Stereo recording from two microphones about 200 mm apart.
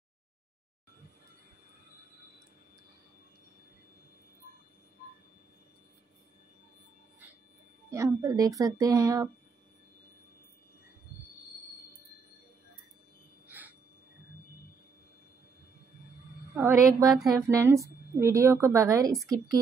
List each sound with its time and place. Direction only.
7.9 s speech: 15° right (ahead or behind)
13.5 s a sound: 10° right (ahead or behind)
16.5 s a woman's voice: 15° right (ahead or behind)